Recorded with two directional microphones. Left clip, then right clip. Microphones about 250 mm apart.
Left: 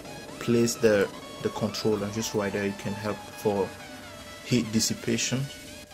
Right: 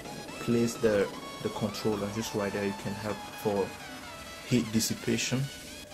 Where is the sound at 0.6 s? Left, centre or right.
Centre.